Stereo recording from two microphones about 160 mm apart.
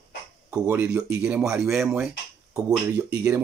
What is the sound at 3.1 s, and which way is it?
Speech, 15° right (ahead or behind).